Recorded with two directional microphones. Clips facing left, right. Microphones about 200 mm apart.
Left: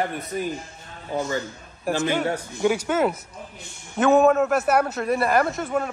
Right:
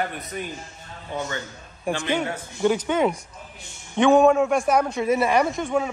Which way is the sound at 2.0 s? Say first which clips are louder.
Left 4 dB; 5° left (ahead or behind).